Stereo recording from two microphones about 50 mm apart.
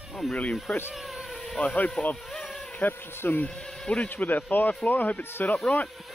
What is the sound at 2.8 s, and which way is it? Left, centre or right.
Speech, left.